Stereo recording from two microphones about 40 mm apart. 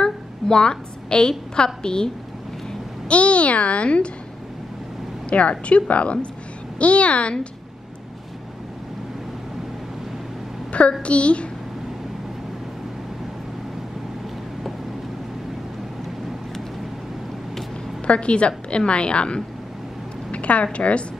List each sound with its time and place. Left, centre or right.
0.0 s a sound: centre
1.6 s a woman's voice: left
3.1 s a child's voice: left
5.3 s a child's voice: left
10.7 s a woman's voice: left
18.0 s a woman's voice: left
20.2 s a sound: left
20.7 s a child's voice: left